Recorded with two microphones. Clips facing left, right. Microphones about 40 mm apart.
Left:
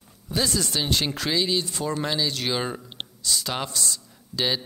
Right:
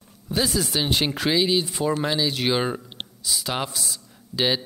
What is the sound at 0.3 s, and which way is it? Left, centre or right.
Speech, centre.